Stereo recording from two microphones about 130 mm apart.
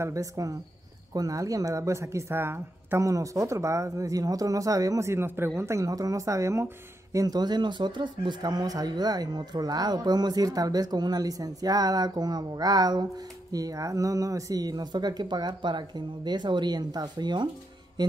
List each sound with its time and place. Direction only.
0.0 s speech: 25° right (ahead or behind)